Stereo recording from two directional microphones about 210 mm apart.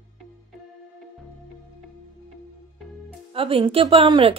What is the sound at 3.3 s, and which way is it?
A woman's voice, 25° right (ahead or behind).